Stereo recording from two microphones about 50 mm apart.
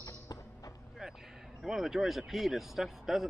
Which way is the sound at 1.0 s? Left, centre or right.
Centre.